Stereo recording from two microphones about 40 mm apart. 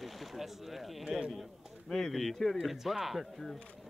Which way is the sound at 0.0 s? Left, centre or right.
Centre.